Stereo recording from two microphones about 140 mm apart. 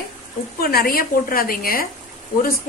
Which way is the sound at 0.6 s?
90° left.